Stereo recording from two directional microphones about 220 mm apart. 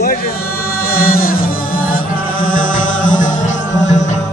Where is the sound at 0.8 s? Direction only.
40° left (ahead or behind).